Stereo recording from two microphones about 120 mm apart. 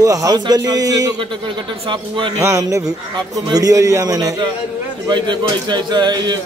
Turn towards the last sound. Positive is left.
turn(degrees=-35)  # may be behind; listen again after turning